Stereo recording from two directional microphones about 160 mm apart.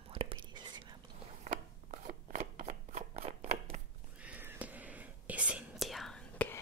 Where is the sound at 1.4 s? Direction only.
50° right (ahead or behind).